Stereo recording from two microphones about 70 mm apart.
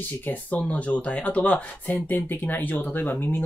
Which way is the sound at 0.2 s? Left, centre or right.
Left.